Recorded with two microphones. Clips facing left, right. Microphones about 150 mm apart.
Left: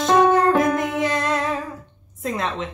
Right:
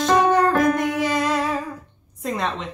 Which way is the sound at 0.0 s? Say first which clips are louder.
Left 1 dB; centre (ahead or behind).